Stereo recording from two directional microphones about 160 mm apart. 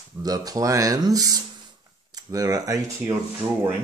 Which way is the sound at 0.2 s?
25° right (ahead or behind).